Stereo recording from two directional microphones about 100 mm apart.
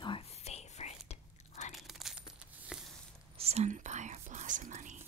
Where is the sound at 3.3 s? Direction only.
90° right.